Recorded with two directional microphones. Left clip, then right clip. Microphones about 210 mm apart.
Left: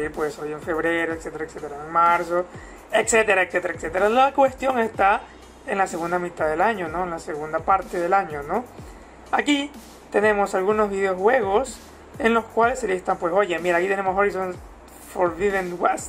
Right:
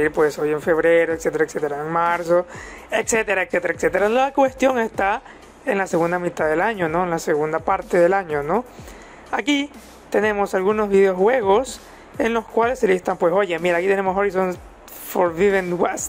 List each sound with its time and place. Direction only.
0.0 s speech: 55° right (ahead or behind)